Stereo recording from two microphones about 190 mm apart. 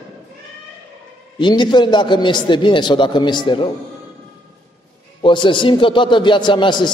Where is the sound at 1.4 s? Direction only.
25° left (ahead or behind).